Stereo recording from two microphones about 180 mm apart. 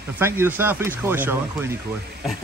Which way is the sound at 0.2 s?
10° right (ahead or behind).